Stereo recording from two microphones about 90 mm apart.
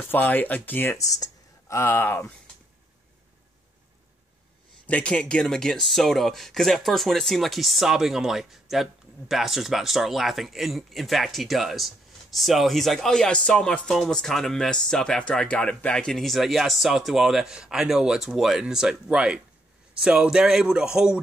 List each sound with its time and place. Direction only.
0.1 s speech: 20° left (ahead or behind)
0.9 s a sound: 40° left (ahead or behind)
1.8 s speech: 25° left (ahead or behind)
4.8 s a man's voice: 15° left (ahead or behind); by 21.2 s 10° right (ahead or behind)